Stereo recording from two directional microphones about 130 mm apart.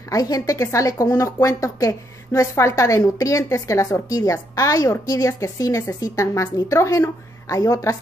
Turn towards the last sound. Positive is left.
turn(degrees=25)  # may be behind; listen again after turning